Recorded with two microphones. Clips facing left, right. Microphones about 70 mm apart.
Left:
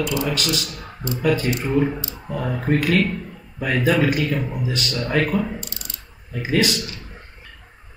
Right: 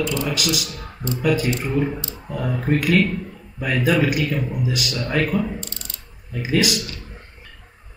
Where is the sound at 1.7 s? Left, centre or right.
Centre.